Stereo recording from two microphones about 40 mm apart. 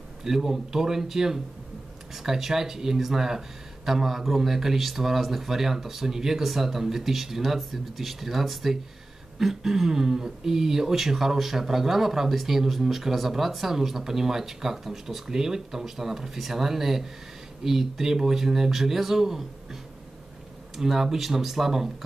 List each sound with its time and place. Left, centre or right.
0.2 s speech: centre